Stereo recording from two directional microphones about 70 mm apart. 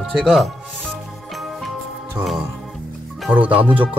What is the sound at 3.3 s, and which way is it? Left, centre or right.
Speech, centre.